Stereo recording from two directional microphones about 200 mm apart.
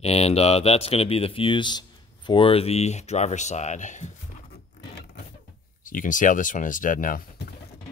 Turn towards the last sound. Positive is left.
turn(degrees=45)  # may be behind; listen again after turning